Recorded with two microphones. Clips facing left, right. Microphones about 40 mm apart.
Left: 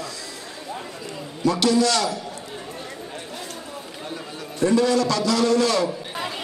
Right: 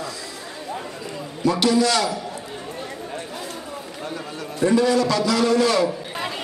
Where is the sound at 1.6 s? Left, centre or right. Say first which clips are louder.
Right 1 dB; right.